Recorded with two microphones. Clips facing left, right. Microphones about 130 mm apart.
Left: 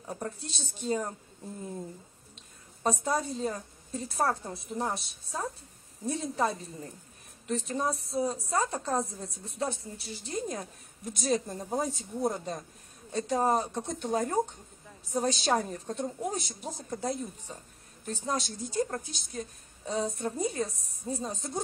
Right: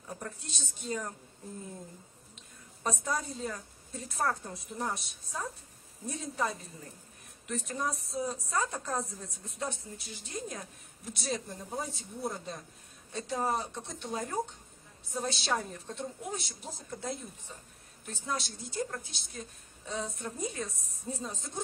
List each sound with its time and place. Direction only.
0.0 s a woman's voice: 35° left (ahead or behind)
2.8 s a woman's voice: 35° left (ahead or behind)